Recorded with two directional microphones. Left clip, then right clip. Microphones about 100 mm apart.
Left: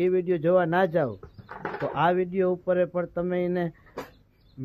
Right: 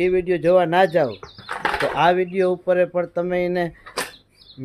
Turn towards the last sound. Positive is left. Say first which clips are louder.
# right 6 dB
turn(degrees=-25)  # may be behind; listen again after turning